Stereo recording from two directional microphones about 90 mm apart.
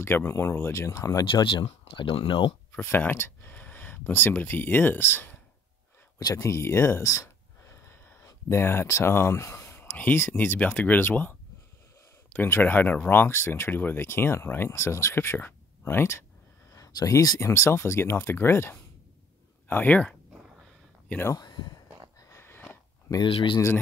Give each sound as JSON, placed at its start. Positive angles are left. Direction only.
{"t": 0.0, "sound": "speech", "side_deg": 25}
{"t": 1.2, "sound": "speech", "side_deg": 70}
{"t": 1.7, "sound": "speech", "side_deg": 80}
{"t": 2.7, "sound": "speech", "side_deg": 20}
{"t": 6.1, "sound": "speech", "side_deg": 45}
{"t": 6.4, "sound": "speech", "side_deg": 30}
{"t": 8.5, "sound": "speech", "side_deg": 25}
{"t": 16.7, "sound": "speech", "side_deg": 40}
{"t": 21.3, "sound": "a sound", "side_deg": 50}
{"t": 22.3, "sound": "sniff", "side_deg": 25}
{"t": 23.2, "sound": "speech", "side_deg": 80}